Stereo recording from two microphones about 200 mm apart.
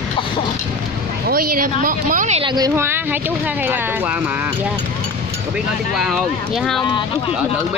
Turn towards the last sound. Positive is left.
turn(degrees=0)  # may be behind; listen again after turning